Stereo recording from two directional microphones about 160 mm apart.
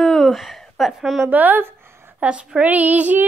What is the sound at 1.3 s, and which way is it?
A woman's voice, 10° right (ahead or behind).